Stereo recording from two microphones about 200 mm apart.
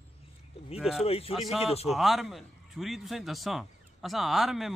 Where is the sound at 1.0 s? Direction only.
30° left (ahead or behind).